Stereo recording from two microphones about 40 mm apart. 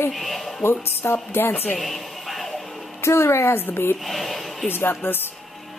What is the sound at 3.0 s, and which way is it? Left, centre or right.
Speech, left.